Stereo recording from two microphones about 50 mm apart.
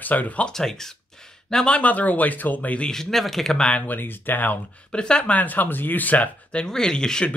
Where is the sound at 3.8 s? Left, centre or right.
Left.